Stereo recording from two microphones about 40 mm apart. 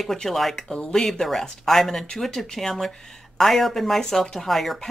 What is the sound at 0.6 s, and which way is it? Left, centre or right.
Speech, centre.